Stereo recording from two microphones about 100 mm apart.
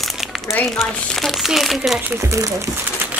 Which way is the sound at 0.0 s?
Centre (ahead or behind).